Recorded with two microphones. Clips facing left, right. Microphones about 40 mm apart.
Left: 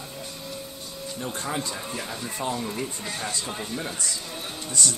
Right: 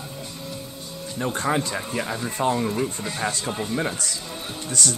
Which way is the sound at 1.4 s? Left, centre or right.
Right.